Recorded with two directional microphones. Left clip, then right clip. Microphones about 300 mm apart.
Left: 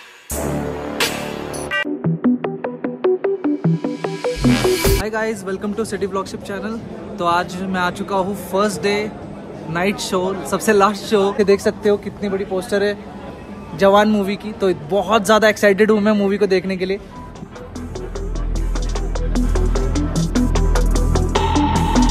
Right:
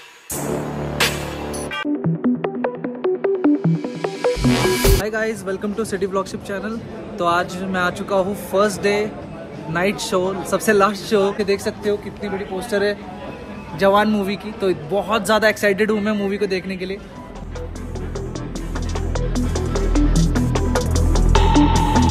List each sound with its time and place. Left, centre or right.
0.4 s music: centre
7.2 s speech: centre
11.3 s a man's voice: left
18.9 s music: centre